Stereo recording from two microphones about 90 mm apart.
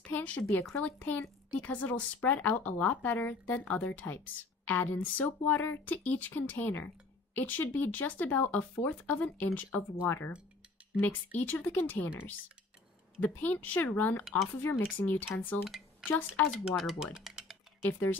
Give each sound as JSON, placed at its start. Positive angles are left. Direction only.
{"t": 0.1, "sound": "speech", "side_deg": 15}
{"t": 13.2, "sound": "speech", "side_deg": 20}
{"t": 15.6, "sound": "speech", "side_deg": -5}
{"t": 16.1, "sound": "speech", "side_deg": 20}
{"t": 16.6, "sound": "speech", "side_deg": -5}